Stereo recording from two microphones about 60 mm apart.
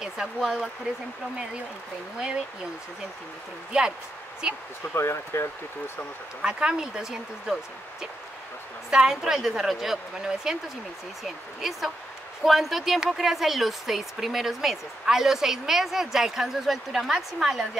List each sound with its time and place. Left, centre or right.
0.4 s a woman's voice: centre
2.1 s a woman's voice: centre
3.7 s a woman's voice: centre
4.9 s speech: left
6.4 s a woman's voice: centre
8.9 s a woman's voice: centre